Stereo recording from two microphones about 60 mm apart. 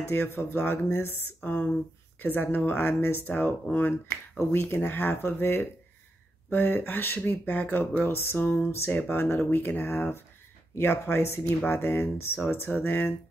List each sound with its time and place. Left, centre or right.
0.1 s speech: left